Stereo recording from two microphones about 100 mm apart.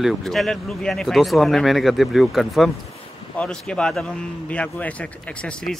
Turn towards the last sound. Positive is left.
turn(degrees=15)  # may be behind; listen again after turning